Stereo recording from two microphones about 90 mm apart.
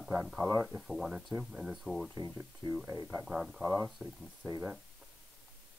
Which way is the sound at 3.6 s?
20° right (ahead or behind).